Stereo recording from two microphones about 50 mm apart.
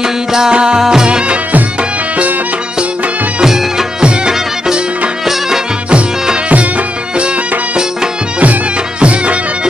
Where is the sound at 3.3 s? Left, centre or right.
Centre.